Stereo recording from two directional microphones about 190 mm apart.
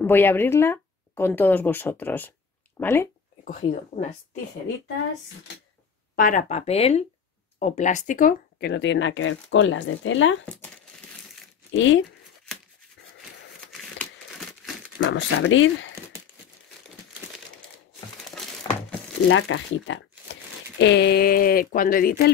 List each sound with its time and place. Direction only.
0.0 s speech: 10° left (ahead or behind)
6.1 s speech: 45° left (ahead or behind); by 10.3 s 90° left
11.7 s speech: 90° left
15.0 s speech: 80° left
19.2 s speech: 85° left
20.8 s speech: 65° left (ahead or behind)